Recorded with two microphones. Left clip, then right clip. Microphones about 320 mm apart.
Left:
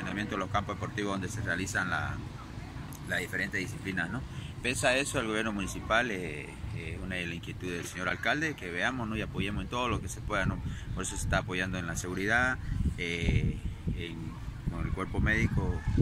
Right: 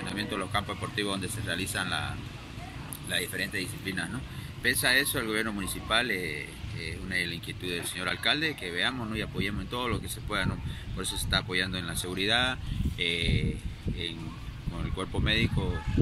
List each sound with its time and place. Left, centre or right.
0.1 s speech: centre
3.1 s speech: centre
14.8 s speech: centre